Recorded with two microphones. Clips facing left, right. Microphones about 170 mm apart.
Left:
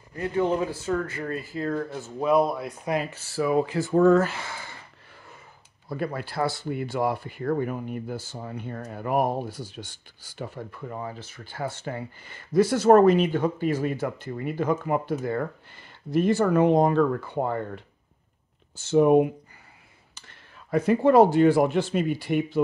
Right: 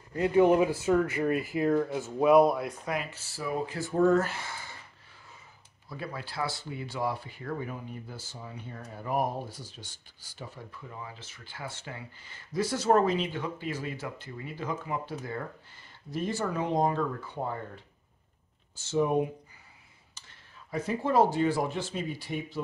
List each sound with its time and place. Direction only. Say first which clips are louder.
0.1 s speech: right 3 dB; 15° right (ahead or behind)
3.3 s speech: left 9 dB; 90° left
5.9 s speech: left 8 dB; 55° left (ahead or behind)
18.8 s speech: left 8 dB; 60° left (ahead or behind)